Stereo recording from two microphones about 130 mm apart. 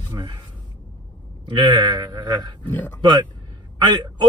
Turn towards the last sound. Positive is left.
turn(degrees=-35)  # may be behind; listen again after turning